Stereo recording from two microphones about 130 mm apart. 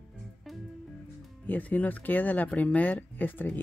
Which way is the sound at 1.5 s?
10° left (ahead or behind).